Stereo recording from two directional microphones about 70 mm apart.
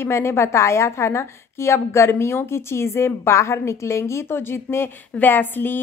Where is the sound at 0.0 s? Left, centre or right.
Left.